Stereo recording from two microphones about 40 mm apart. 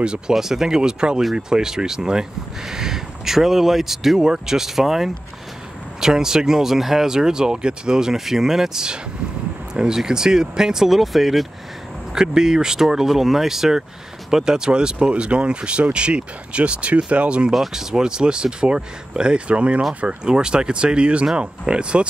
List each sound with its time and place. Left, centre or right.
0.3 s speech: centre
12.1 s speech: centre
17.5 s speech: centre